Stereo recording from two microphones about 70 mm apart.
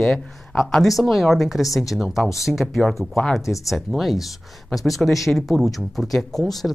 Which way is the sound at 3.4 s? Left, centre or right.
Left.